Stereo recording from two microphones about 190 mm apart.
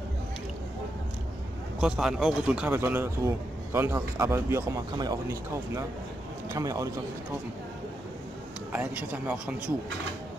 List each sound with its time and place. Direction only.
1.8 s speech: 5° right (ahead or behind)
8.7 s speech: 10° right (ahead or behind)